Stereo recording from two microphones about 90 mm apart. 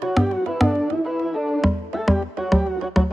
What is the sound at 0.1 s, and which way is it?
Music, centre (ahead or behind).